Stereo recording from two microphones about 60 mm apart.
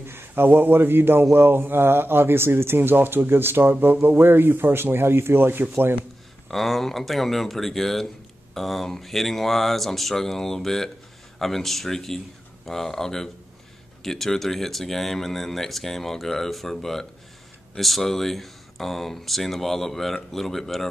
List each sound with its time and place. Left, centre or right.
0.0 s speech: right
6.5 s speech: centre